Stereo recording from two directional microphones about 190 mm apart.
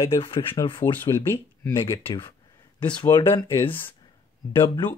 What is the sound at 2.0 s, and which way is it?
Speech, 25° left (ahead or behind).